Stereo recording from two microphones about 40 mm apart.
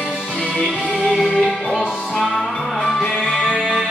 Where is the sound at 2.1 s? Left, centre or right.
Centre.